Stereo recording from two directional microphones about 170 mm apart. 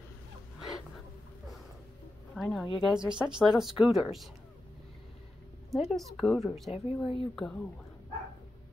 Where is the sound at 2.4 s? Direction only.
Centre (ahead or behind).